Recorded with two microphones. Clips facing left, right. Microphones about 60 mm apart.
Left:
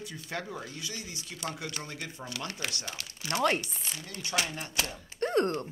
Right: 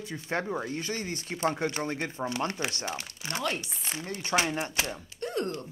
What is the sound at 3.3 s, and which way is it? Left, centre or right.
Speech, left.